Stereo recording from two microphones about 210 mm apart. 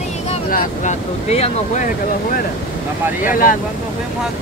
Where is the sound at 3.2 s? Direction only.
40° left (ahead or behind).